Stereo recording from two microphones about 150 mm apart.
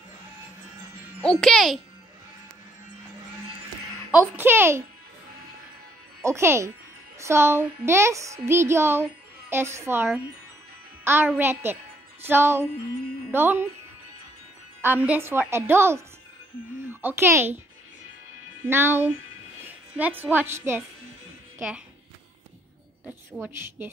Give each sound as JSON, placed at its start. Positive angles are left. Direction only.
{"t": 1.2, "sound": "a child's voice", "side_deg": 5}
{"t": 4.1, "sound": "speech", "side_deg": -15}
{"t": 6.2, "sound": "speech", "side_deg": -20}
{"t": 11.1, "sound": "a child's voice", "side_deg": -15}
{"t": 14.8, "sound": "a child's voice", "side_deg": -10}
{"t": 18.7, "sound": "speech", "side_deg": -15}
{"t": 23.0, "sound": "a woman's voice", "side_deg": -10}